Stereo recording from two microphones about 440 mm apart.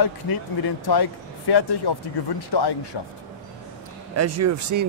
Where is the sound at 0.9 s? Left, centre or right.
Left.